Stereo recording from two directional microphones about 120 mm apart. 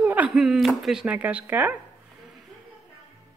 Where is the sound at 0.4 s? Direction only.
Centre (ahead or behind).